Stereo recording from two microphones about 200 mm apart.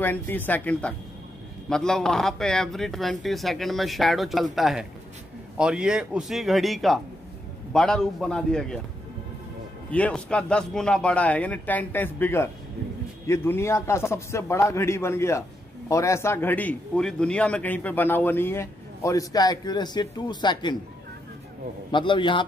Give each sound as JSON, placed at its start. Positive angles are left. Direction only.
{"t": 0.0, "sound": "speech", "side_deg": 10}
{"t": 9.8, "sound": "speech", "side_deg": 5}
{"t": 21.9, "sound": "a man's voice", "side_deg": 25}